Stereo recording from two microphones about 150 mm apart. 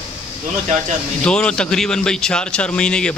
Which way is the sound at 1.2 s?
5° left (ahead or behind).